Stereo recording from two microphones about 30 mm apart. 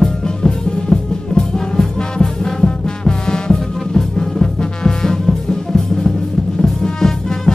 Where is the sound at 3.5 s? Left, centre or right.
Centre.